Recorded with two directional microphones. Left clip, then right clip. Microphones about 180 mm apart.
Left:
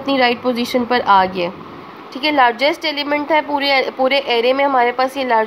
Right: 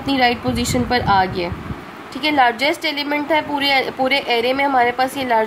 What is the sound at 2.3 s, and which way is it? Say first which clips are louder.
A woman's voice: left 2 dB; 20° left (ahead or behind).